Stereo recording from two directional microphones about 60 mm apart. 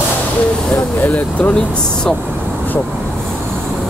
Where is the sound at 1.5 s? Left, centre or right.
Centre.